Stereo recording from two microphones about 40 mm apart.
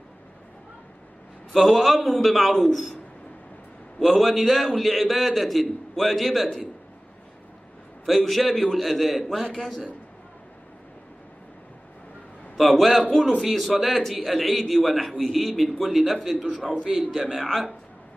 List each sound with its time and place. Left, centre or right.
1.5 s a man's voice: centre
4.0 s a man's voice: centre
8.0 s a man's voice: centre
12.5 s a man's voice: centre
16.8 s a man's voice: centre
17.3 s a man's voice: centre